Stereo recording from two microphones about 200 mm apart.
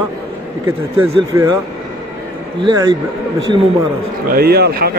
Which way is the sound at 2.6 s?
20° right (ahead or behind).